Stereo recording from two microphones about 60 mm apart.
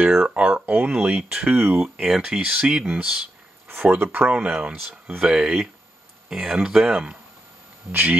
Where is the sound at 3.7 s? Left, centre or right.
Right.